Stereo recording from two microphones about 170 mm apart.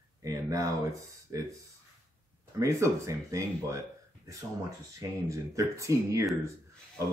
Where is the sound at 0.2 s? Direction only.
20° right (ahead or behind).